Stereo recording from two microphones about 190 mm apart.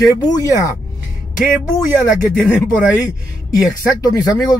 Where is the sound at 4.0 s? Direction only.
20° left (ahead or behind).